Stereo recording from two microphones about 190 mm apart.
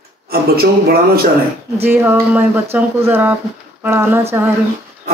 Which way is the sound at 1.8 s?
10° right (ahead or behind).